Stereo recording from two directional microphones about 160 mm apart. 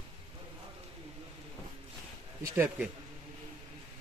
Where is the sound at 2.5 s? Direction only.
10° right (ahead or behind).